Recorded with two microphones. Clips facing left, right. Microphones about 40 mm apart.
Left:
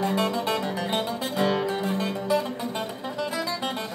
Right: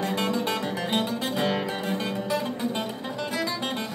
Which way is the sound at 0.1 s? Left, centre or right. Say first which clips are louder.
Left 1 dB; centre.